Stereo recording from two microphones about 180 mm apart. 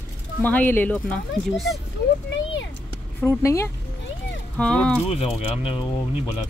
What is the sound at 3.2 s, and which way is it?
Speech, 15° left (ahead or behind).